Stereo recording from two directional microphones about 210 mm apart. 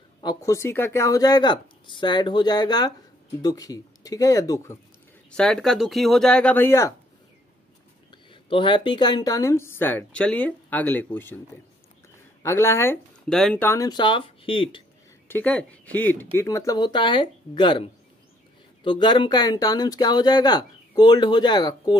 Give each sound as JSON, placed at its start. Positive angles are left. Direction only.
{"t": 0.2, "sound": "speech", "side_deg": 20}
{"t": 5.3, "sound": "speech", "side_deg": 5}
{"t": 8.1, "sound": "speech", "side_deg": 25}
{"t": 12.4, "sound": "speech", "side_deg": 10}
{"t": 15.2, "sound": "speech", "side_deg": 10}
{"t": 18.9, "sound": "speech", "side_deg": 20}